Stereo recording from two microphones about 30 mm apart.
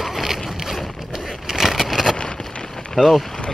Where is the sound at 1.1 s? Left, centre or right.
Centre.